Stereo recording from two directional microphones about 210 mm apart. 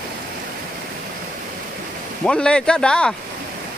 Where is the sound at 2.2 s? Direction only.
5° left (ahead or behind).